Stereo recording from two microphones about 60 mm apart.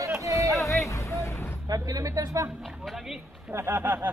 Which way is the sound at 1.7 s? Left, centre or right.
Right.